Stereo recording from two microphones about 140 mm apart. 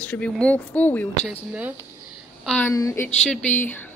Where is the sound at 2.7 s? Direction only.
20° left (ahead or behind).